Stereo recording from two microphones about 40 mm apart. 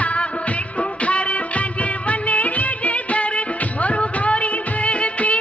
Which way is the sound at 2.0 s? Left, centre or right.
Left.